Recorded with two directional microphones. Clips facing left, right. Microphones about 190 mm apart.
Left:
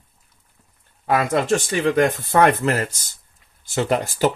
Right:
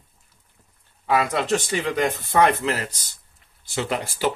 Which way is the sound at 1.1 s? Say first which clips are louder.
Left 2 dB; 50° left (ahead or behind).